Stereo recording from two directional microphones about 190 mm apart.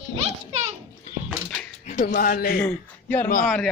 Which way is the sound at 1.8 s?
45° left (ahead or behind).